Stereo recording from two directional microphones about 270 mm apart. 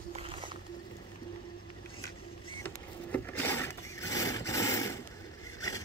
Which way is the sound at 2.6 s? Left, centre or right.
Centre.